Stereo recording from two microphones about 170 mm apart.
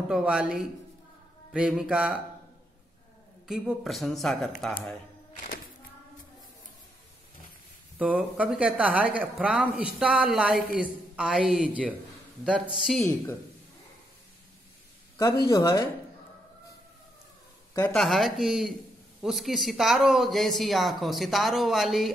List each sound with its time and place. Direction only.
0.1 s speech: 5° right (ahead or behind)
3.4 s speech: 5° right (ahead or behind)
8.0 s speech: 10° right (ahead or behind)
13.0 s speech: 15° left (ahead or behind)
15.1 s speech: 20° left (ahead or behind)
17.9 s speech: centre (ahead or behind)